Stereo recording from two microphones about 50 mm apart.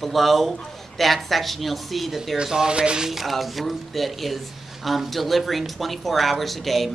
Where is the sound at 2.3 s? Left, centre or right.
Centre.